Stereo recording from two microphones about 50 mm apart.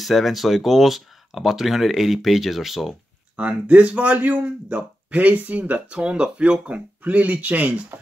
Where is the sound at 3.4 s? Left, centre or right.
Right.